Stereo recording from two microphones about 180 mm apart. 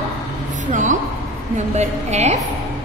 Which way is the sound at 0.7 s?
45° right (ahead or behind).